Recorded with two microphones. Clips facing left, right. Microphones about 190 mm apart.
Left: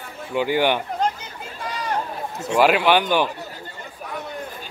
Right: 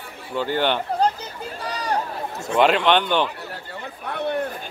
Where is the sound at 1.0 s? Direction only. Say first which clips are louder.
Right 3 dB; 35° right (ahead or behind).